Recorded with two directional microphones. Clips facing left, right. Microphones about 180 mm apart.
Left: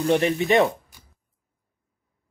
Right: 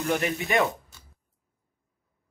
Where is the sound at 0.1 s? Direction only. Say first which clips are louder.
Left 7 dB; 25° left (ahead or behind).